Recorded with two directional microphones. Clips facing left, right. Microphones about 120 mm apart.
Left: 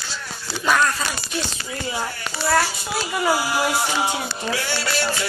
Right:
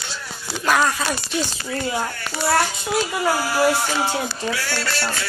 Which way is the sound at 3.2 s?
10° left (ahead or behind).